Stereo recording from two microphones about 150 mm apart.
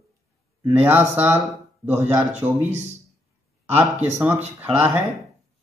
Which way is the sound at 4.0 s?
10° right (ahead or behind).